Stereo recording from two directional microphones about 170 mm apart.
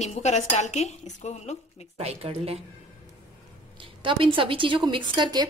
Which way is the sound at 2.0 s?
35° right (ahead or behind).